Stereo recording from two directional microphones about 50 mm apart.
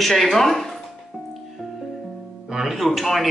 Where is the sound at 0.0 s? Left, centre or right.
Centre.